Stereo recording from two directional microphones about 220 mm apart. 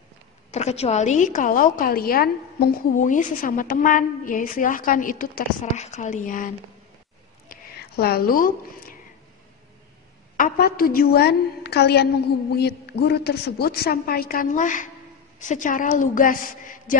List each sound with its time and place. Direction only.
0.5 s a woman's voice: 30° left (ahead or behind)
7.4 s a sound: 45° left (ahead or behind)
10.3 s a woman's voice: 40° left (ahead or behind)